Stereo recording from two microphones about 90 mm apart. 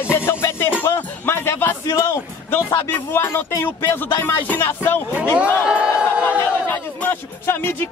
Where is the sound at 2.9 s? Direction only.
25° left (ahead or behind).